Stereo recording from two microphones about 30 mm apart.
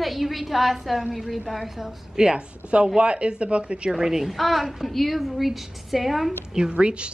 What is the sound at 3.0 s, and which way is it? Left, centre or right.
Speech, right.